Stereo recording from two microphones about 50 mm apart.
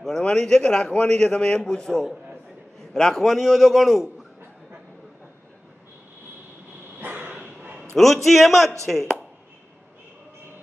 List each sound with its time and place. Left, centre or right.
0.2 s a man's voice: centre
7.0 s a sound: right
7.9 s a man's voice: centre